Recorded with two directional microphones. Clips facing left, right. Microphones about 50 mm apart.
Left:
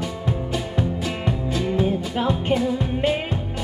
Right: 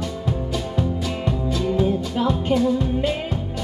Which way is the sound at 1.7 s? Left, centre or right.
Left.